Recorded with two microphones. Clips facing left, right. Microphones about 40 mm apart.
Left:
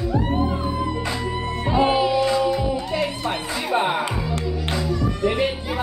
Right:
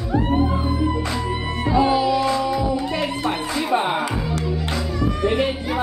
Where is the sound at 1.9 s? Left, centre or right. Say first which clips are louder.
Right 1 dB; left.